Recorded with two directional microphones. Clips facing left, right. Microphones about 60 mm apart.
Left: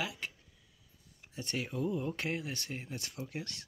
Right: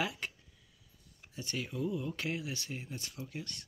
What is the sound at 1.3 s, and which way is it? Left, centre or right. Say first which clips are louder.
Speech: left 1 dB; left.